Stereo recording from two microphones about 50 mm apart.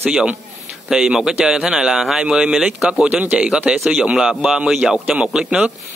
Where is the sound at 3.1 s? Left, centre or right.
Right.